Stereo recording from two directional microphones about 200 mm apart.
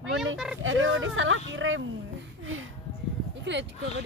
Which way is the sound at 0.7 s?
80° right.